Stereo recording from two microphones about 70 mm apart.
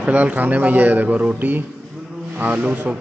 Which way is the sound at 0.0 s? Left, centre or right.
Right.